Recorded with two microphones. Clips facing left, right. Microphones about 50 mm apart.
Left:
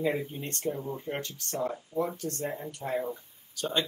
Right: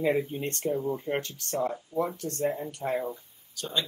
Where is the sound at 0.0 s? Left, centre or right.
Right.